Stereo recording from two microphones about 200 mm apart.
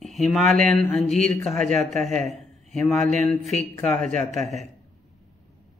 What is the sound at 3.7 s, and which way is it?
Speech, 5° left (ahead or behind).